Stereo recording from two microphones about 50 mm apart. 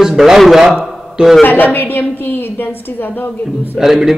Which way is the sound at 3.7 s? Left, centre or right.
Centre.